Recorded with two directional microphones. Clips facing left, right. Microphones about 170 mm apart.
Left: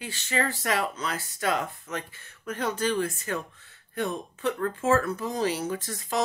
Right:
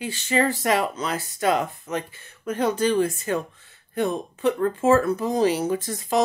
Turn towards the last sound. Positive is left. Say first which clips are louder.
# right 7 dB
turn(degrees=-15)  # may be behind; listen again after turning